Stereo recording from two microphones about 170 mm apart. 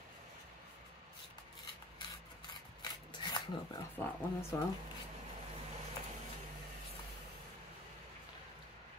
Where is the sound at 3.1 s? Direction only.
25° left (ahead or behind).